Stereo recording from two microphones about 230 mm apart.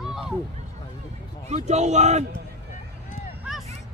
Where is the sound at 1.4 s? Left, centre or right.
Right.